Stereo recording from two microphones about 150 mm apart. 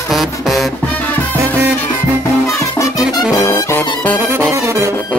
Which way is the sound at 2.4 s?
20° left (ahead or behind).